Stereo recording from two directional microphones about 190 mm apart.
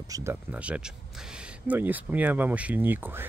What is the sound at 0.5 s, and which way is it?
Speech, 5° right (ahead or behind).